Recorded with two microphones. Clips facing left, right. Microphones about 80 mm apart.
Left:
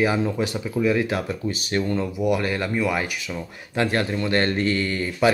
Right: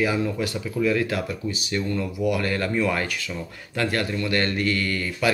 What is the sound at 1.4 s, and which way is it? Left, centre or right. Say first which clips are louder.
Speech: left 3 dB; left.